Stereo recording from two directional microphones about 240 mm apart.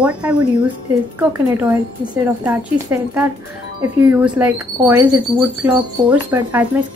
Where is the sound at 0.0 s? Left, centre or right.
Centre.